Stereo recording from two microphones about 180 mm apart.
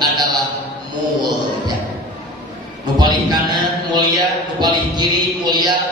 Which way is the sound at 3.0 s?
25° right (ahead or behind).